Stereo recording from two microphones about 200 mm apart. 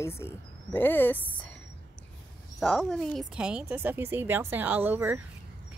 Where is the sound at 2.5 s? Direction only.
5° left (ahead or behind).